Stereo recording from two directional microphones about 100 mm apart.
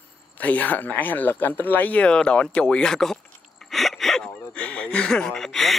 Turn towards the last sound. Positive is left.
turn(degrees=0)  # may be behind; listen again after turning